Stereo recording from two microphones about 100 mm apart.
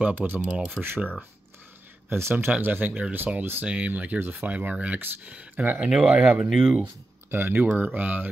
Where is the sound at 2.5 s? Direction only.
15° right (ahead or behind).